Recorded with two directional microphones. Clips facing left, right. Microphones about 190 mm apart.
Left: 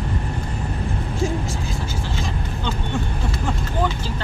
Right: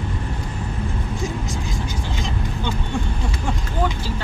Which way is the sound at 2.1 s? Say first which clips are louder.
Right 1 dB; 15° right (ahead or behind).